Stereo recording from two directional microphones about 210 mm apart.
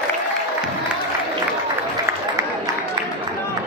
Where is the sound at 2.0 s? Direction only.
15° right (ahead or behind).